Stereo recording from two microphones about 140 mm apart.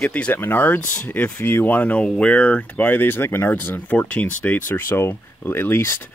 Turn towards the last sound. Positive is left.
turn(degrees=15)  # may be behind; listen again after turning